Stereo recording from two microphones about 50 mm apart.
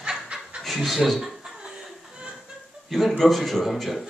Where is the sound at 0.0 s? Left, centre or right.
Centre.